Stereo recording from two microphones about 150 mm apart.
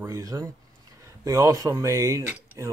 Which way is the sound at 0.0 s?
20° right (ahead or behind).